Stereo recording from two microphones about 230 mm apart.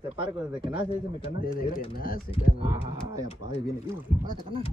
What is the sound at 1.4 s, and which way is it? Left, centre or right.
Speech, left.